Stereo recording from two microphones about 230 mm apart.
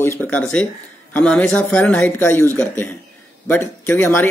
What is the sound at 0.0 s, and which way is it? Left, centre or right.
Speech, centre.